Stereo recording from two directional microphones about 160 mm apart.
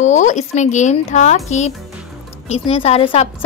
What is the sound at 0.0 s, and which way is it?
A woman's voice, 50° left (ahead or behind).